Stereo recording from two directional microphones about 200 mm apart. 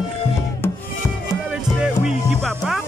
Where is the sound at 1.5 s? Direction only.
5° right (ahead or behind).